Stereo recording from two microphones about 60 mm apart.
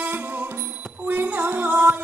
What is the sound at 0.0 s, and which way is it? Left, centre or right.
Music, right.